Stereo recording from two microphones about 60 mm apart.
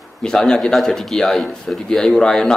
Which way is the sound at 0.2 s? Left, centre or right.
Centre.